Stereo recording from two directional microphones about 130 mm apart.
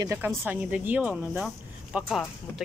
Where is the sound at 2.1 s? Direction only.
5° left (ahead or behind).